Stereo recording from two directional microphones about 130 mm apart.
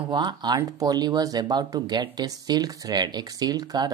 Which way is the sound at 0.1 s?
35° right (ahead or behind).